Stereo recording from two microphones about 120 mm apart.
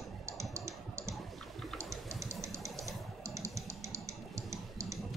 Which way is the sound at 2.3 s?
25° right (ahead or behind).